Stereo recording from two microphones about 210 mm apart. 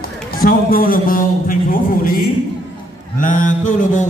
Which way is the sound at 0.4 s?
45° left (ahead or behind).